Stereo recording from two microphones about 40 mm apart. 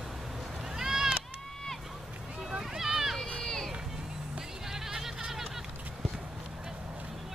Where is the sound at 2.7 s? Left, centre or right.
Centre.